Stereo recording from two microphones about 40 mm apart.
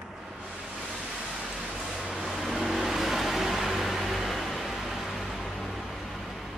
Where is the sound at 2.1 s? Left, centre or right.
Centre.